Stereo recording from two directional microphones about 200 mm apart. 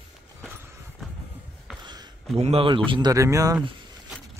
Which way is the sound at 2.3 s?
30° right (ahead or behind).